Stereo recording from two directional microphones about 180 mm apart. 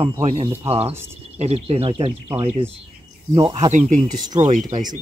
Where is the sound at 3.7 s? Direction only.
45° right (ahead or behind).